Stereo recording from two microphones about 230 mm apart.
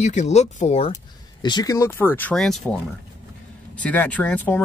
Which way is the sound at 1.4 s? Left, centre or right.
Centre.